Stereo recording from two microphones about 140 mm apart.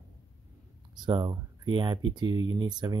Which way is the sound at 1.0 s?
35° right (ahead or behind).